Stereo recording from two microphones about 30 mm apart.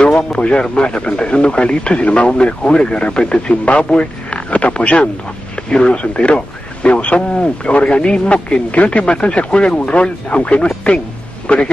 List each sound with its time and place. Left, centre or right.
0.0 s speech: left